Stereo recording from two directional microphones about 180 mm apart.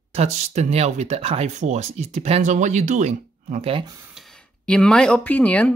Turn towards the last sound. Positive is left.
turn(degrees=10)  # may be behind; listen again after turning